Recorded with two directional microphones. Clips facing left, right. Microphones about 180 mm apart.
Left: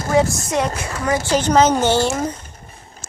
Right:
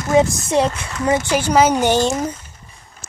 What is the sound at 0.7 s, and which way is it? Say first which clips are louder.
Speech: right 1 dB; 30° left (ahead or behind).